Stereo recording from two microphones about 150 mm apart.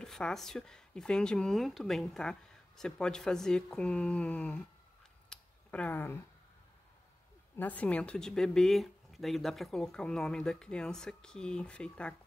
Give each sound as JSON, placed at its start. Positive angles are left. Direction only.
{"t": 0.0, "sound": "a woman's voice", "side_deg": 5}
{"t": 5.3, "sound": "a sound", "side_deg": 10}
{"t": 7.5, "sound": "a woman's voice", "side_deg": 10}